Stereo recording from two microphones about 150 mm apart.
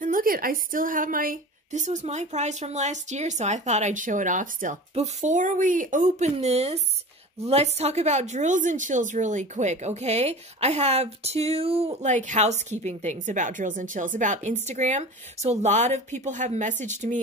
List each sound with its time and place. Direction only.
0.0 s a woman's voice: 70° right (ahead or behind)